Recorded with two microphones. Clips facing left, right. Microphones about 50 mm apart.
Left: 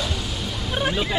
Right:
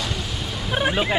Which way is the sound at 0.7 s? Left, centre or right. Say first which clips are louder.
Right 3 dB; centre.